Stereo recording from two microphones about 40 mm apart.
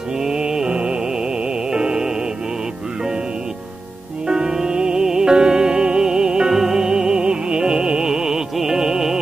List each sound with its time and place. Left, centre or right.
0.2 s mantra: centre
1.7 s music: right
4.3 s music: centre